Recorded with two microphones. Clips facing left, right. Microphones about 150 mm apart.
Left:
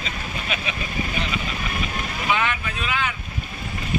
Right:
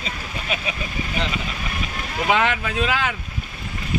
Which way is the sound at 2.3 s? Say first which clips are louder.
Right 4 dB; 90° right.